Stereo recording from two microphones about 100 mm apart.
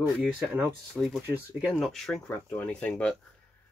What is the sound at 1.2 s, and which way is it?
Speech, 20° right (ahead or behind).